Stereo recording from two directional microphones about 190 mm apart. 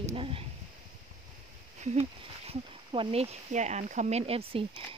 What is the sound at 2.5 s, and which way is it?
Speech, 30° right (ahead or behind).